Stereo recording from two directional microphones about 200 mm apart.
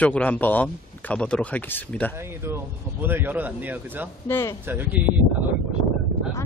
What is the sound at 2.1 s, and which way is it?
Speech, 10° right (ahead or behind).